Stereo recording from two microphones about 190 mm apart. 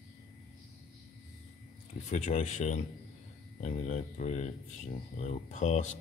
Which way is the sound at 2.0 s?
40° left (ahead or behind).